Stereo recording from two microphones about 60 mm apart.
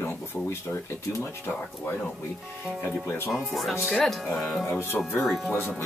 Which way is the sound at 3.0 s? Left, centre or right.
Left.